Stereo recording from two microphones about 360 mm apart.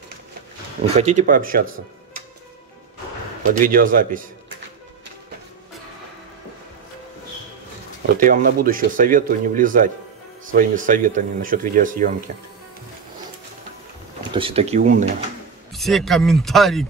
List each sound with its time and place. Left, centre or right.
0.8 s speech: centre
3.5 s speech: right
8.2 s speech: right
14.3 s speech: centre
15.7 s speech: centre